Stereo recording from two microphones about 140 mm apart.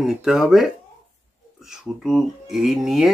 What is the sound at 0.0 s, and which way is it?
Speech, 5° right (ahead or behind).